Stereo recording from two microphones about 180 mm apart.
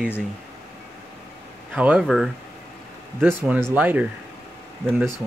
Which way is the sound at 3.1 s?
10° right (ahead or behind).